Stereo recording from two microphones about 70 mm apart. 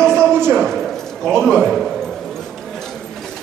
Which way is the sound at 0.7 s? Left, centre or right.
Centre.